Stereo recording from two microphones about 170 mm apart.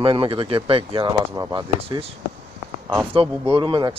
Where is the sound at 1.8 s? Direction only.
35° right (ahead or behind).